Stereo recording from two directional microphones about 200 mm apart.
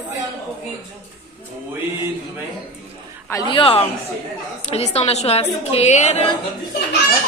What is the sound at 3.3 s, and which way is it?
A man's voice, 20° left (ahead or behind).